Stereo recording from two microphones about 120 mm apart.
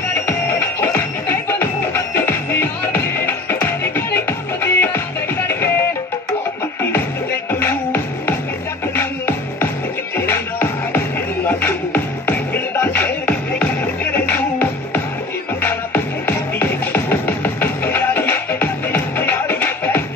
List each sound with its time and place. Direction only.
0.1 s music: 20° left (ahead or behind)
7.5 s music: 20° left (ahead or behind)
10.1 s music: 20° left (ahead or behind)